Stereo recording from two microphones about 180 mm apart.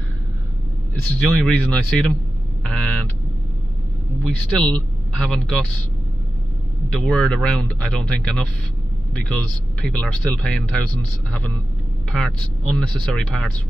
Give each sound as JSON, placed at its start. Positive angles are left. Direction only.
{"t": 1.2, "sound": "speech", "side_deg": 5}
{"t": 2.6, "sound": "a sound", "side_deg": 5}
{"t": 4.2, "sound": "a man's voice", "side_deg": 5}
{"t": 6.9, "sound": "speech", "side_deg": 0}
{"t": 9.3, "sound": "speech", "side_deg": 5}
{"t": 12.1, "sound": "speech", "side_deg": 0}